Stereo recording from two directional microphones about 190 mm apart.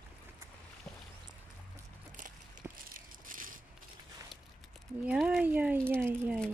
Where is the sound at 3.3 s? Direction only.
45° right (ahead or behind).